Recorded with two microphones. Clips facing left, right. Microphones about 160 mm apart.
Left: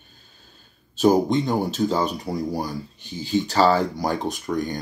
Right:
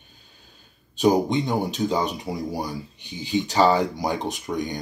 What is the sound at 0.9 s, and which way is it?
Speech, 15° right (ahead or behind).